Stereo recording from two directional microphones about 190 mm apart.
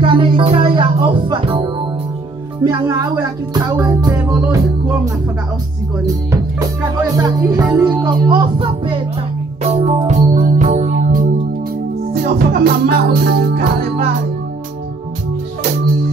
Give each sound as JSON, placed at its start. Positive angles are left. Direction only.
{"t": 0.0, "sound": "music", "side_deg": -25}
{"t": 3.2, "sound": "music", "side_deg": -20}
{"t": 4.2, "sound": "music", "side_deg": -5}
{"t": 7.2, "sound": "music", "side_deg": -20}